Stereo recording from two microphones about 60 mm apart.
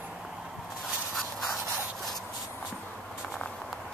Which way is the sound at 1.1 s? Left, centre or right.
Centre.